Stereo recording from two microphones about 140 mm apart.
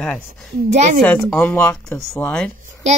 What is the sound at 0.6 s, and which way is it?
Speech, 60° right (ahead or behind).